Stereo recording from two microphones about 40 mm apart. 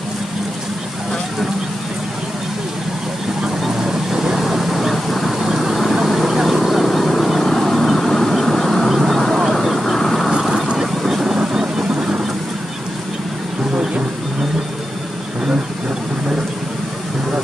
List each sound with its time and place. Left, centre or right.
3.6 s vehicle: centre
5.4 s vehicle: centre
10.8 s vehicle: centre